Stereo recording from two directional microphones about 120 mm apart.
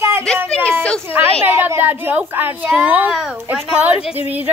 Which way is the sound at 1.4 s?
20° right (ahead or behind).